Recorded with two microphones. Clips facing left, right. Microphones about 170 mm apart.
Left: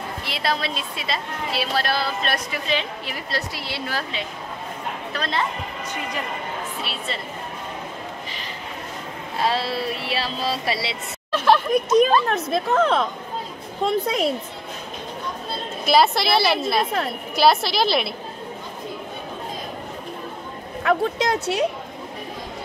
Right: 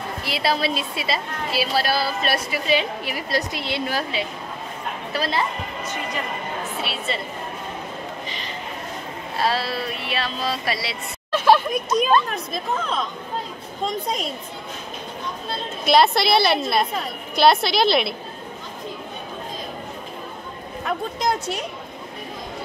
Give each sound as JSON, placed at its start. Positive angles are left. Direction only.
{"t": 0.2, "sound": "a woman's voice", "side_deg": -5}
{"t": 5.1, "sound": "a woman's voice", "side_deg": -5}
{"t": 6.8, "sound": "a woman's voice", "side_deg": 0}
{"t": 9.4, "sound": "speech", "side_deg": 20}
{"t": 11.3, "sound": "speech", "side_deg": 0}
{"t": 12.3, "sound": "a woman's voice", "side_deg": 70}
{"t": 15.8, "sound": "a woman's voice", "side_deg": 0}
{"t": 20.8, "sound": "a woman's voice", "side_deg": 75}